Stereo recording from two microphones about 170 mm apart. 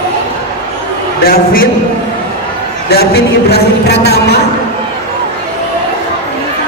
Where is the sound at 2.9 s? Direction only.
70° left (ahead or behind).